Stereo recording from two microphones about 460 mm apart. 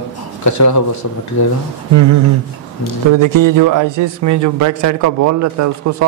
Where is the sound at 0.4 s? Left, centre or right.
Left.